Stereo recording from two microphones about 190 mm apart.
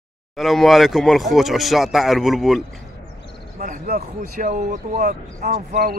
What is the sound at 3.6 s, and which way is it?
Speech, 45° right (ahead or behind).